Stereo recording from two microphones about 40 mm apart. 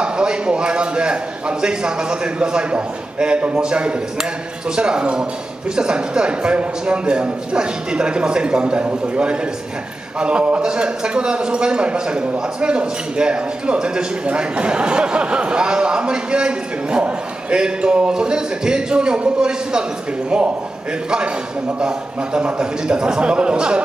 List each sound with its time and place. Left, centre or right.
0.0 s a sound: right
1.6 s speech: right
21.7 s speech: right